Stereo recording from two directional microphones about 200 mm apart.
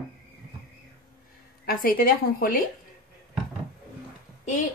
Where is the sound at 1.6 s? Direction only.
45° left (ahead or behind).